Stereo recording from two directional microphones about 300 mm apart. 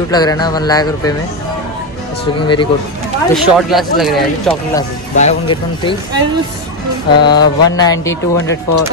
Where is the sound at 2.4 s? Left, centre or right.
Centre.